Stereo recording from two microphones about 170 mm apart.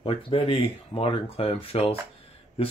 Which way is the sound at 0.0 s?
30° left (ahead or behind).